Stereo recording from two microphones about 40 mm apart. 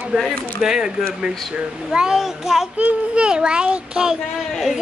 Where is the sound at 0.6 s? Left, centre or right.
Centre.